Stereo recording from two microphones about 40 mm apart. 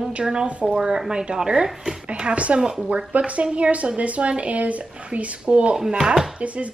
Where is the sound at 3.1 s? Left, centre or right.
Right.